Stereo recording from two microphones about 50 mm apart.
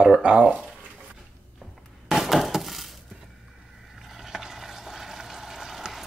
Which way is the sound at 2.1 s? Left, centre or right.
Centre.